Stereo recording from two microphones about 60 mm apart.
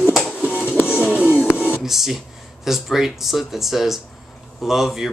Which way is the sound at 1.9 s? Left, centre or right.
Centre.